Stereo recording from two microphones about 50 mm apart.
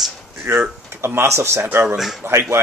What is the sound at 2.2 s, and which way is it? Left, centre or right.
Speech, right.